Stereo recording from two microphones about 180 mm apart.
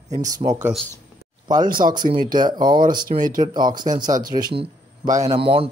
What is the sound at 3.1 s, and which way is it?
Speech, 50° right (ahead or behind).